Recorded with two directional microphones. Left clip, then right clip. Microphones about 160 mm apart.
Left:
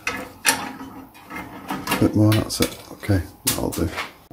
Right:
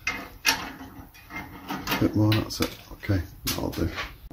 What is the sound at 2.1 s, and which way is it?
Speech, 10° left (ahead or behind).